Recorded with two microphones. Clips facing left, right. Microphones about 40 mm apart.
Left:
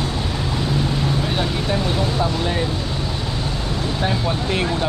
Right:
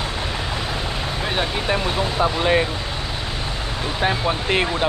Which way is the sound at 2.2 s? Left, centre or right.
Right.